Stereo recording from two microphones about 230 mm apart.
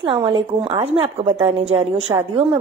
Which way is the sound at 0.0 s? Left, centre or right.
Right.